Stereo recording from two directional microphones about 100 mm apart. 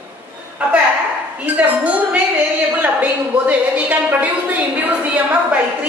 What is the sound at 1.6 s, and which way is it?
A woman's voice, 15° right (ahead or behind).